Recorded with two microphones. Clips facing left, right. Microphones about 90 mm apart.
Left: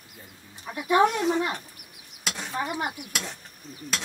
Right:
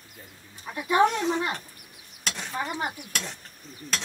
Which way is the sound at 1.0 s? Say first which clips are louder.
Even; 10° left (ahead or behind).